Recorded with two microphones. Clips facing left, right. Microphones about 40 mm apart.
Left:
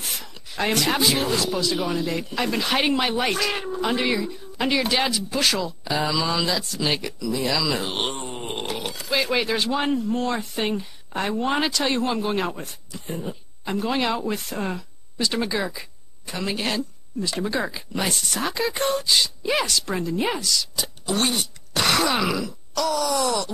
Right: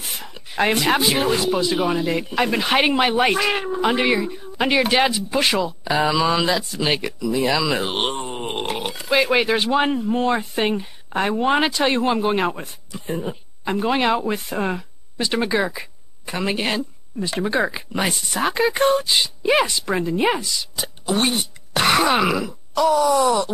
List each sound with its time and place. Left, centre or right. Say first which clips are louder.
0.2 s speech: right 8 dB; right
18.1 s speech: right 1 dB; centre
18.4 s speech: right 7 dB; right
23.1 s speech: right 6 dB; centre